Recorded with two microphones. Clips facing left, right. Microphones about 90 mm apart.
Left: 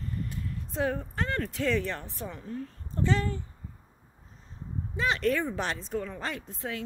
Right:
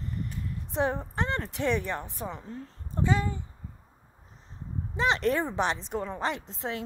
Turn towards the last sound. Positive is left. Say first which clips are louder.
# right 2 dB
turn(degrees=-25)  # may be behind; listen again after turning